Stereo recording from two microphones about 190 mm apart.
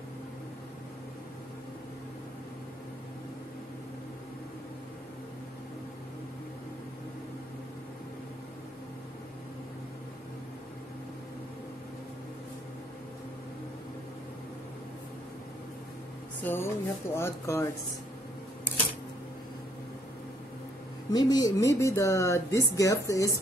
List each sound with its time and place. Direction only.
16.4 s speech: 10° left (ahead or behind)
21.1 s speech: 20° left (ahead or behind)